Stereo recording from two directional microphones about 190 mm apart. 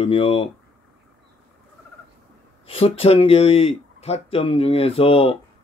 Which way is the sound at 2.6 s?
30° left (ahead or behind).